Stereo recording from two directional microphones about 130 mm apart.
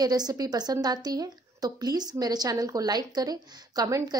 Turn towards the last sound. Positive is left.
turn(degrees=-25)  # may be behind; listen again after turning